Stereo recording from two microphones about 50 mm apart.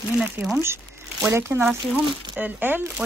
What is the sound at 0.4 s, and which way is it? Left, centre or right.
Speech, right.